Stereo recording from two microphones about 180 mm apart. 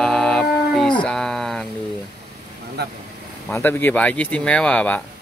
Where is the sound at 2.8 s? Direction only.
65° right (ahead or behind).